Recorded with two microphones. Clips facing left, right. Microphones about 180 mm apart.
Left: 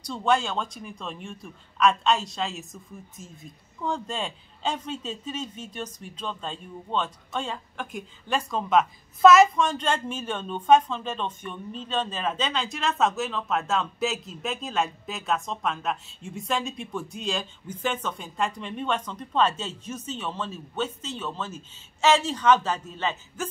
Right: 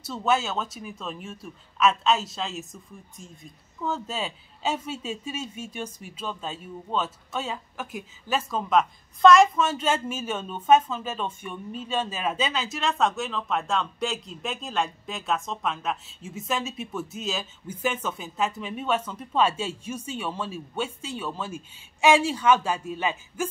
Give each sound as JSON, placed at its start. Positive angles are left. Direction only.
{"t": 0.0, "sound": "a woman's voice", "side_deg": -5}